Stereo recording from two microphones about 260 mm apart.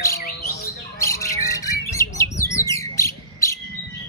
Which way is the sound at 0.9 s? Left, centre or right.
Centre.